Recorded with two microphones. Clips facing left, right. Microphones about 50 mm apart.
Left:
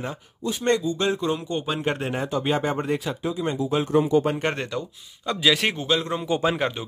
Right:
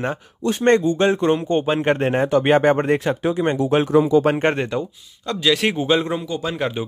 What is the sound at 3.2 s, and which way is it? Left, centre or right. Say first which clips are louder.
Speech: right 5 dB; right.